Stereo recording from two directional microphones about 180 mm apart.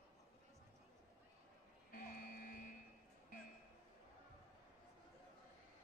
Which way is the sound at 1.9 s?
55° left (ahead or behind).